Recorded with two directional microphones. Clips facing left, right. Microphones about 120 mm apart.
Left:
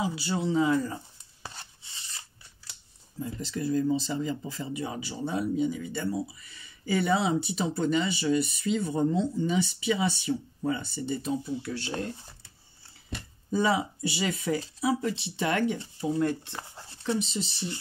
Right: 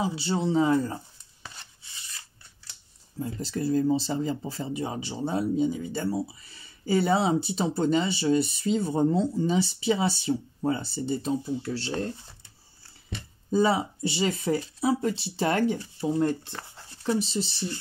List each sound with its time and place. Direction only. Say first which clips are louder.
0.0 s speech: right 2 dB; 30° right (ahead or behind)
1.4 s filing: left 2 dB; 35° left (ahead or behind)
3.2 s speech: right 2 dB; 40° right (ahead or behind)
13.5 s speech: right 3 dB; 35° right (ahead or behind)